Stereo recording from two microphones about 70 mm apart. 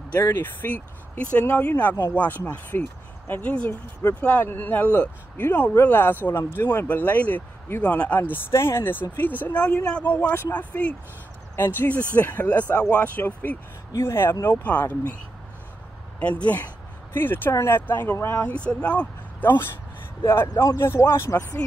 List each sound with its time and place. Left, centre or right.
0.3 s speech: left
11.5 s speech: left
13.9 s speech: left
14.4 s speech: left
16.2 s speech: left
18.5 s speech: centre
20.5 s speech: left
20.8 s speech: left